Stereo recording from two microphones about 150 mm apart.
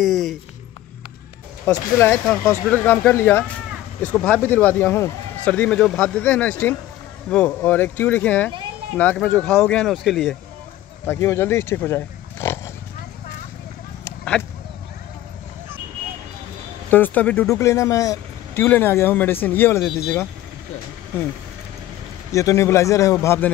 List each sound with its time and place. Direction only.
0.0 s speech: centre (ahead or behind)
1.7 s speech: 15° left (ahead or behind); by 10.3 s centre (ahead or behind)
11.1 s speech: 15° left (ahead or behind)
16.9 s speech: 10° left (ahead or behind)
22.3 s a man's voice: 20° left (ahead or behind)